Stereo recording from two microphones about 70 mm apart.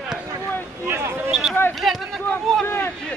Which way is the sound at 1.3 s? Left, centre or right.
Centre.